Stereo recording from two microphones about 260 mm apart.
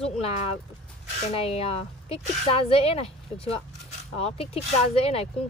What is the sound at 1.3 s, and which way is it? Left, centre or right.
Speech, left.